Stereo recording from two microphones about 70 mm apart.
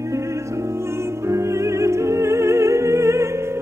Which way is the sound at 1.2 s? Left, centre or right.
Right.